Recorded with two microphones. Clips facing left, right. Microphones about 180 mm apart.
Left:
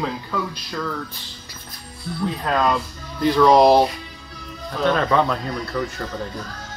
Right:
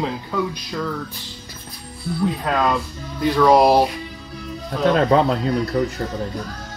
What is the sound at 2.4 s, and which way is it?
Speech, 5° right (ahead or behind).